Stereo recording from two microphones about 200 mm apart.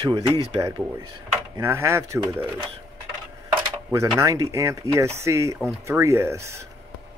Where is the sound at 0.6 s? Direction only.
15° right (ahead or behind).